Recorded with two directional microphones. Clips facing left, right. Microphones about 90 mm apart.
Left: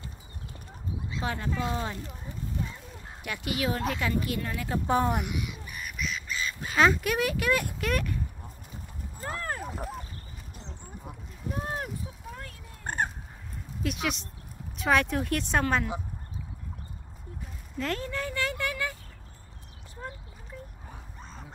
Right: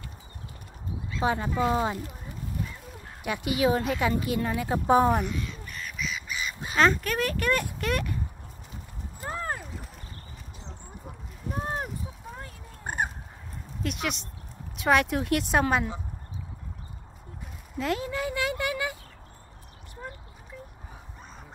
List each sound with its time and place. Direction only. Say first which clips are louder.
1.2 s speech: right 6 dB; 20° right (ahead or behind)
3.3 s speech: right 6 dB; 20° right (ahead or behind)
5.2 s crow: right 2 dB; 15° left (ahead or behind)
5.9 s duck: even; centre (ahead or behind)
6.2 s crow: even; 15° right (ahead or behind)
6.8 s speech: even; 10° left (ahead or behind)
9.2 s a sound: right 2 dB; 10° right (ahead or behind)
12.8 s fowl: even; 10° right (ahead or behind)
13.8 s speech: even; centre (ahead or behind)
15.6 s speech: right 2 dB; 15° right (ahead or behind)
17.7 s speech: right 3 dB; 5° right (ahead or behind)